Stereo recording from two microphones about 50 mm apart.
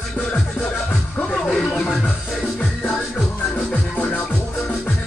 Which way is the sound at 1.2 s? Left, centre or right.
Centre.